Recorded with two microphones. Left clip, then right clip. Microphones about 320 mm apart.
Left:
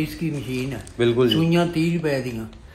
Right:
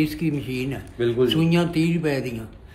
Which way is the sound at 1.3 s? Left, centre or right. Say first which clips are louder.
Left 1 dB; centre.